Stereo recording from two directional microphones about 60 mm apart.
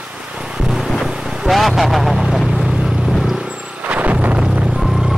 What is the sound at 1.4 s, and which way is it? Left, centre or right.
Vehicle, centre.